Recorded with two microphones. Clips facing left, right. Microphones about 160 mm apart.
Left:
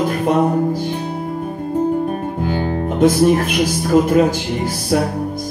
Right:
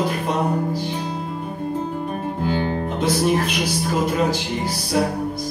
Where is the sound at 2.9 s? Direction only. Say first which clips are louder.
Left 8 dB; 50° left (ahead or behind).